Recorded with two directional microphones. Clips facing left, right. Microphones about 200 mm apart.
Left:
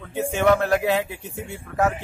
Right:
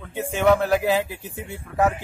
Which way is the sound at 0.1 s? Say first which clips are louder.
Even; centre (ahead or behind).